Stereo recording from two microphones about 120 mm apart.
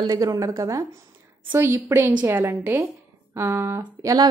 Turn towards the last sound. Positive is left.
turn(degrees=-30)  # may be behind; listen again after turning